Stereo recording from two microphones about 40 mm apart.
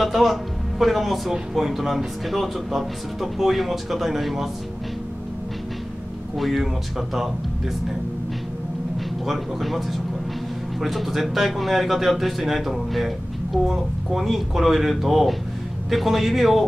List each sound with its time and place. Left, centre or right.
0.0 s speech: centre
6.3 s speech: centre
9.2 s speech: centre